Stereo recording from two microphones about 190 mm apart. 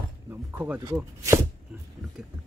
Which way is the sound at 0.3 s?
10° right (ahead or behind).